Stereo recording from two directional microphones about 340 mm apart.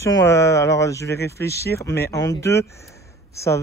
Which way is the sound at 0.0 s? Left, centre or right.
Centre.